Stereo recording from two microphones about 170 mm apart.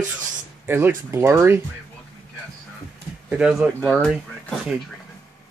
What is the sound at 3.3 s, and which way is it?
Speech, 5° right (ahead or behind).